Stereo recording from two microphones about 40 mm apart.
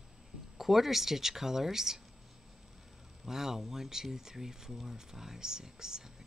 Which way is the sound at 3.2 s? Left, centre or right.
Centre.